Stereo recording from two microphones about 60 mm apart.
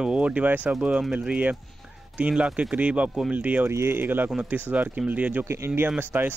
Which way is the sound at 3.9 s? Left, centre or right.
Right.